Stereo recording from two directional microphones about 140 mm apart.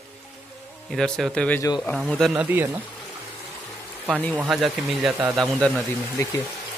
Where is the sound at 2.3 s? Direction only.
15° right (ahead or behind).